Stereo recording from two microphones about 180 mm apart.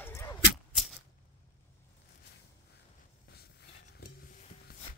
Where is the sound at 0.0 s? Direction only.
15° left (ahead or behind).